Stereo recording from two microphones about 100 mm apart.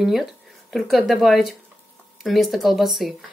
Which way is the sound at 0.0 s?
5° right (ahead or behind).